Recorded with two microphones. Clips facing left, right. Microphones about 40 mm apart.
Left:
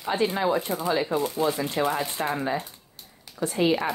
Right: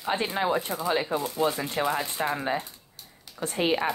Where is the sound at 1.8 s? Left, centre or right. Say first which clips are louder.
Left 1 dB; right.